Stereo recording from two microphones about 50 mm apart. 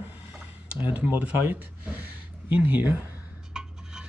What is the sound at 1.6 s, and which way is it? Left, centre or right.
Speech, right.